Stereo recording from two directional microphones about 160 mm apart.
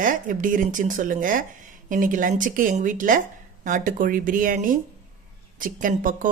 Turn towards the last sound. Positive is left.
turn(degrees=-55)  # may be behind; listen again after turning